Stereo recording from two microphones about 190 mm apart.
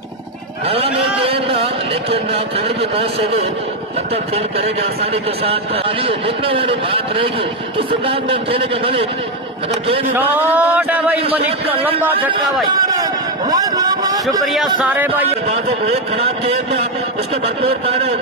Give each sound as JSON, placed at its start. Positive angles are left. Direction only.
{"t": 0.9, "sound": "speech", "side_deg": -30}
{"t": 5.1, "sound": "a man's voice", "side_deg": -30}
{"t": 10.1, "sound": "speech", "side_deg": -10}
{"t": 13.5, "sound": "vehicle", "side_deg": -20}
{"t": 14.4, "sound": "speech", "side_deg": 0}
{"t": 15.4, "sound": "a man's voice", "side_deg": -35}